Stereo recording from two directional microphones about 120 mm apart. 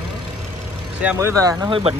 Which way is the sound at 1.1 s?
25° right (ahead or behind).